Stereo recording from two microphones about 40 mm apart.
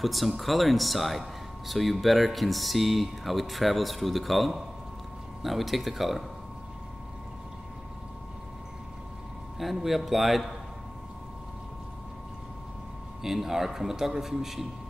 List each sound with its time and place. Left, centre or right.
0.0 s speech: centre
9.6 s speech: centre
13.2 s a man's voice: centre